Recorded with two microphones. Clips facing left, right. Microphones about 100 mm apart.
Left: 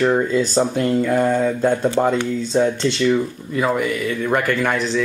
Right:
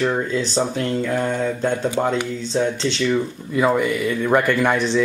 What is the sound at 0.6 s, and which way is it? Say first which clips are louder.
Speech: left 3 dB; 10° left (ahead or behind).